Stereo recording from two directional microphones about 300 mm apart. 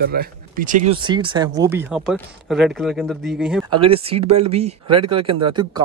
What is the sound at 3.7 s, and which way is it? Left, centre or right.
Speech, centre.